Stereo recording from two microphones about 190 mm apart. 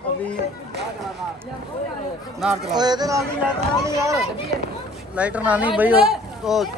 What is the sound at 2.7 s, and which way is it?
Speech, 20° right (ahead or behind).